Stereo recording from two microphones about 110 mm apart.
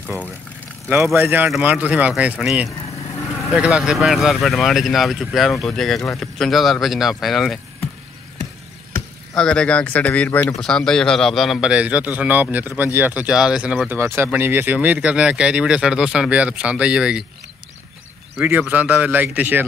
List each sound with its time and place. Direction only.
0.8 s speech: 25° right (ahead or behind); by 7.5 s centre (ahead or behind)
9.3 s speech: 5° left (ahead or behind)
10.5 s speech: 5° left (ahead or behind)
13.8 s speech: 20° right (ahead or behind)
18.7 s speech: 15° right (ahead or behind)